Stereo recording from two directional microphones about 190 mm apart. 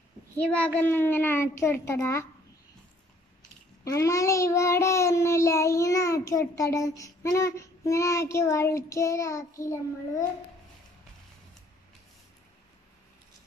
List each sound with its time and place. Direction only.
0.4 s a child's voice: 5° left (ahead or behind)
3.8 s a child's voice: 15° left (ahead or behind)